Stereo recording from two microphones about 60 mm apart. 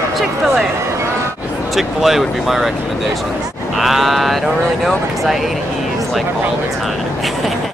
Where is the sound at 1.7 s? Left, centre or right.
Centre.